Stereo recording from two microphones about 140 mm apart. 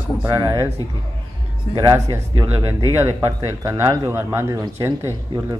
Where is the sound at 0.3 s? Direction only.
30° right (ahead or behind).